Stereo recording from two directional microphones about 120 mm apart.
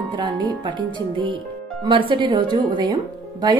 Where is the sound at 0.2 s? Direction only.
40° right (ahead or behind).